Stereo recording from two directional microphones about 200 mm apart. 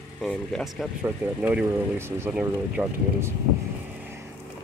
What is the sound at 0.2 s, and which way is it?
Speech, centre (ahead or behind).